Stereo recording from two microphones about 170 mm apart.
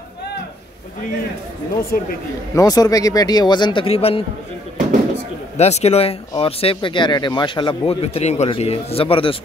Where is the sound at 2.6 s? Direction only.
20° left (ahead or behind).